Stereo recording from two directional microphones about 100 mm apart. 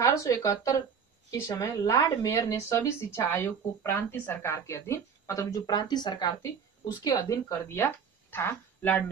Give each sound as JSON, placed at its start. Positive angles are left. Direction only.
{"t": 0.0, "sound": "a woman's voice", "side_deg": 30}